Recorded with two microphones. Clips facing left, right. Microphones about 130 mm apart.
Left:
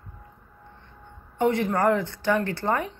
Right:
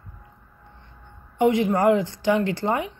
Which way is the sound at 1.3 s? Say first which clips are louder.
Right 3 dB; 15° right (ahead or behind).